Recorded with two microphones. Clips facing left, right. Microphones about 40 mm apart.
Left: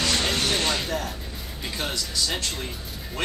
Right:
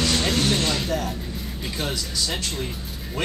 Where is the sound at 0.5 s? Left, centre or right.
Centre.